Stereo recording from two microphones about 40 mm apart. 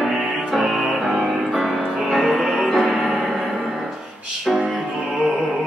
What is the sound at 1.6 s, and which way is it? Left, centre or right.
Music, centre.